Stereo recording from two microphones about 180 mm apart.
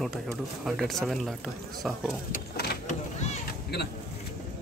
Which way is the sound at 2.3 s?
60° left (ahead or behind).